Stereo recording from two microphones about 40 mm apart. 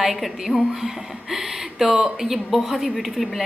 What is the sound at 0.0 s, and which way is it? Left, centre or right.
A woman's voice, centre.